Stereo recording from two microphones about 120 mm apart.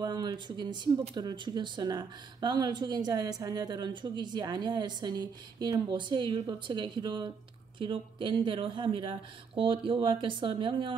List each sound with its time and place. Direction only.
0.0 s speech: 35° right (ahead or behind)